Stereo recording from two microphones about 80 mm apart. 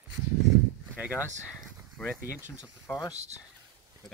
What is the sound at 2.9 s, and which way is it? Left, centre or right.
Speech, left.